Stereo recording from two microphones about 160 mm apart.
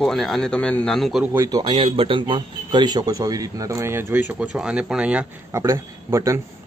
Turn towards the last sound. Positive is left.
turn(degrees=-15)  # may be behind; listen again after turning